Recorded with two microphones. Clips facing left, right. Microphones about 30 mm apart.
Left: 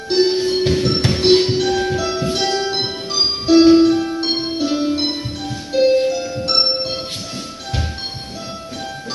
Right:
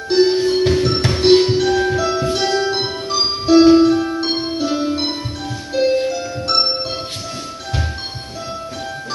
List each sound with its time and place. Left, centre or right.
0.1 s music: left
6.4 s music: left